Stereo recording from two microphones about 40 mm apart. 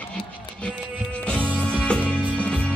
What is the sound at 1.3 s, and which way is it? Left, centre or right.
Music, left.